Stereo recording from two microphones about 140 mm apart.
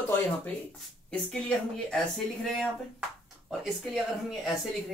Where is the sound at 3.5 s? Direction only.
Centre (ahead or behind).